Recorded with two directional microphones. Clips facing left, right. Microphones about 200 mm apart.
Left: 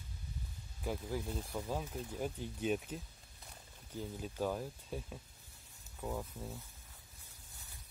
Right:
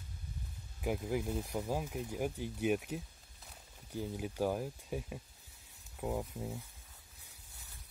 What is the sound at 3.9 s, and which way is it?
Speech, 10° right (ahead or behind).